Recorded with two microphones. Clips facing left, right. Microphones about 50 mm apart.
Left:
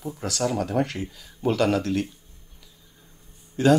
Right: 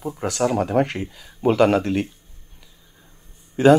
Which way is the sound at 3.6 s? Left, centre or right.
Right.